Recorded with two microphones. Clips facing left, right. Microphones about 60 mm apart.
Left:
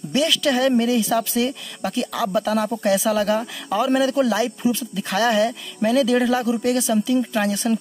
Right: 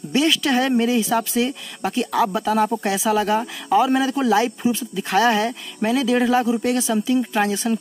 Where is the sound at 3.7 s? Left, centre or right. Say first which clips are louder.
Right 2 dB; centre.